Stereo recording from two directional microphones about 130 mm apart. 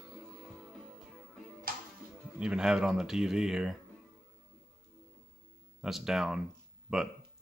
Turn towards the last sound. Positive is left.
turn(degrees=-5)  # may be behind; listen again after turning